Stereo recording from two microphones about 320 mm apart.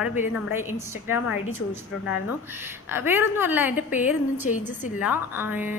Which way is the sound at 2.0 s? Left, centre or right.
Centre.